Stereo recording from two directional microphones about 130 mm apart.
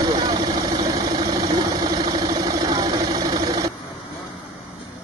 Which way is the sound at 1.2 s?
30° right (ahead or behind).